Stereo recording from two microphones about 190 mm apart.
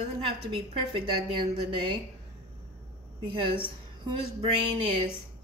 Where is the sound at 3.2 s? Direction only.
25° right (ahead or behind).